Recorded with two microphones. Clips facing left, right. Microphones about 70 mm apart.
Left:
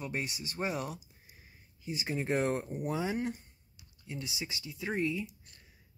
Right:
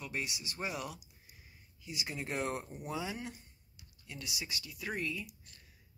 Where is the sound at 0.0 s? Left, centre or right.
Left.